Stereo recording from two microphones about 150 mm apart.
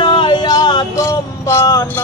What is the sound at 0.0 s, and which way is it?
Music, 30° left (ahead or behind).